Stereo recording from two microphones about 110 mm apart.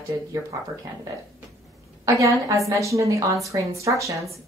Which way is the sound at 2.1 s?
30° right (ahead or behind).